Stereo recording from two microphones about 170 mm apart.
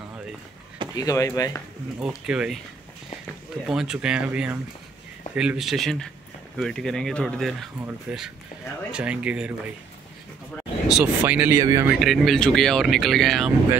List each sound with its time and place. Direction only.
0.9 s speech: 20° left (ahead or behind)
2.0 s speech: 5° right (ahead or behind)
3.6 s speech: 5° right (ahead or behind)
10.5 s a sound: centre (ahead or behind)
11.2 s speech: 10° right (ahead or behind)
12.0 s speech: centre (ahead or behind)